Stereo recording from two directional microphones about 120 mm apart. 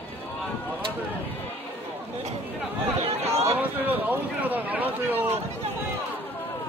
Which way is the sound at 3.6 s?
15° right (ahead or behind).